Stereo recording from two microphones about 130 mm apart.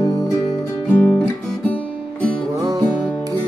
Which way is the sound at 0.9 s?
10° left (ahead or behind).